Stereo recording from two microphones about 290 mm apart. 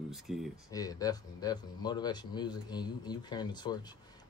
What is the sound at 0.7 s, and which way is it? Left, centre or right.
Speech, centre.